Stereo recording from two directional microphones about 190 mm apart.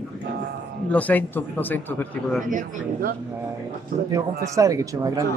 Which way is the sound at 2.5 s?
45° right (ahead or behind).